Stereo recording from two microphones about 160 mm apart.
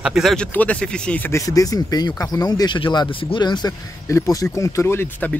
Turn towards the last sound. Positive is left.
turn(degrees=15)  # may be behind; listen again after turning